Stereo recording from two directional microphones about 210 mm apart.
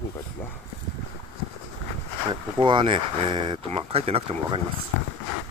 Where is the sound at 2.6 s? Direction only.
25° right (ahead or behind).